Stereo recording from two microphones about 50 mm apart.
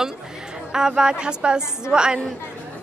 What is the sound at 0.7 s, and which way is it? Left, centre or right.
A woman's voice, centre.